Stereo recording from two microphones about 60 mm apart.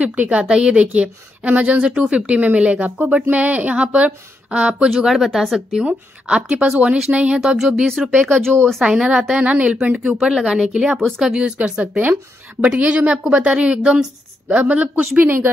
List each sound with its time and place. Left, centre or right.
0.0 s a woman's voice: right
4.8 s speech: centre
5.9 s a woman's voice: centre
7.3 s a woman's voice: centre
7.9 s speech: centre
8.8 s a woman's voice: centre
10.1 s a woman's voice: centre; by 15.0 s right